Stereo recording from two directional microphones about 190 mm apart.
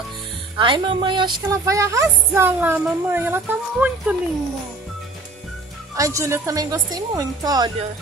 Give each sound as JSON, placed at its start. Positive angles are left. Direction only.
{"t": 0.6, "sound": "speech", "side_deg": -25}
{"t": 5.9, "sound": "a woman's voice", "side_deg": -15}